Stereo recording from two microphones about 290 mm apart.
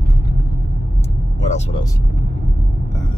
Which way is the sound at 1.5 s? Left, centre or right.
Centre.